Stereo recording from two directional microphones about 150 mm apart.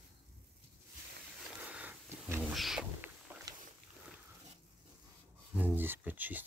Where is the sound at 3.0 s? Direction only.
10° right (ahead or behind).